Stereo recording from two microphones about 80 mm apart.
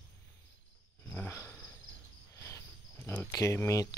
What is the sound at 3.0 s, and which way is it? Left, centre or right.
Cricket, left.